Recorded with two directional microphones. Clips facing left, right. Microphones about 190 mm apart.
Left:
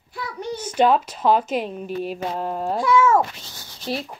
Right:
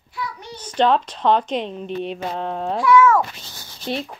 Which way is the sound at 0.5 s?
10° left (ahead or behind).